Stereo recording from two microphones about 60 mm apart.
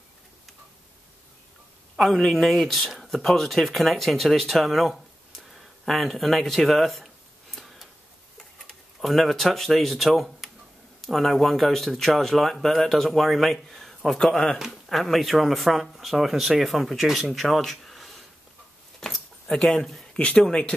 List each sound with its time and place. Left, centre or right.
2.0 s speech: centre
7.5 s a sound: centre
9.0 s speech: centre
18.9 s keys jangling: centre
20.2 s speech: centre